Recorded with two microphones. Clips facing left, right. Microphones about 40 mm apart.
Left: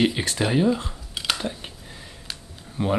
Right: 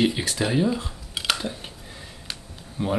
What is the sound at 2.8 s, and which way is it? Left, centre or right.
Speech, centre.